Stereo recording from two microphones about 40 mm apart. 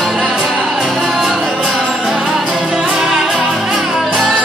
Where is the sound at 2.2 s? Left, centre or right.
Centre.